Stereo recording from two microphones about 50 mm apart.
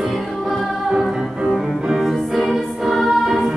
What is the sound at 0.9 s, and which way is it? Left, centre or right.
Music, centre.